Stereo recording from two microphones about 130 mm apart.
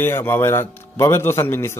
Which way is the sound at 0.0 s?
15° left (ahead or behind).